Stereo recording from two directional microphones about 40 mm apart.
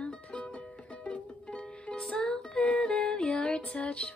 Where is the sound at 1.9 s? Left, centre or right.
Left.